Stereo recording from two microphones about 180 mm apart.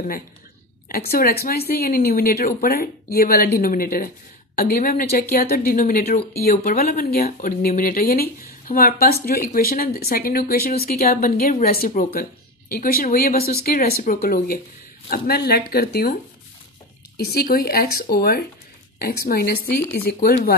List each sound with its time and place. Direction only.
0.8 s a woman's voice: 55° left (ahead or behind)
17.2 s a woman's voice: 60° left (ahead or behind)